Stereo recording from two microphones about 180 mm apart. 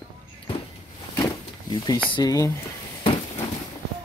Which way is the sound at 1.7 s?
20° left (ahead or behind).